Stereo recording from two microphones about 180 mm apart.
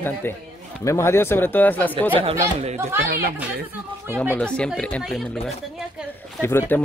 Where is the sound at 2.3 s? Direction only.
35° right (ahead or behind).